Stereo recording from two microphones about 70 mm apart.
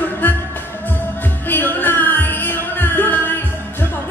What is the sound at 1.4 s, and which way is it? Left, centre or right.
Music, left.